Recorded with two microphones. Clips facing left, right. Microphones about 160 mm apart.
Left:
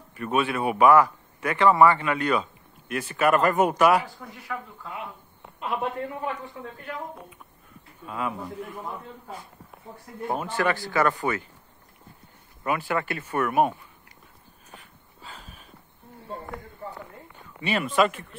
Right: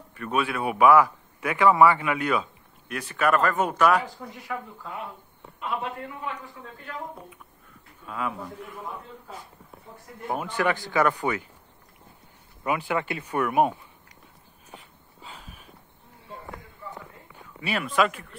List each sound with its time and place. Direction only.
0.1 s a man's voice: 5° left (ahead or behind)
5.6 s a man's voice: 35° left (ahead or behind)
8.0 s a man's voice: 5° left (ahead or behind)
10.3 s speech: 15° right (ahead or behind)
12.6 s speech: 15° right (ahead or behind)
15.2 s a sound: 20° right (ahead or behind)
16.3 s a sound: 40° left (ahead or behind)
17.4 s speech: centre (ahead or behind)